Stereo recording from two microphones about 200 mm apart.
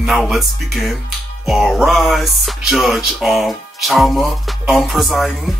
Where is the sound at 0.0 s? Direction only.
Centre (ahead or behind).